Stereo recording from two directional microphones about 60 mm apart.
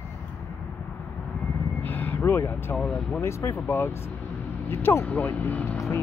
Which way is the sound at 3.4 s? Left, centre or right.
Left.